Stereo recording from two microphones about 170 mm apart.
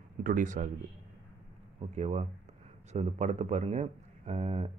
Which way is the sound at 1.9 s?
40° right (ahead or behind).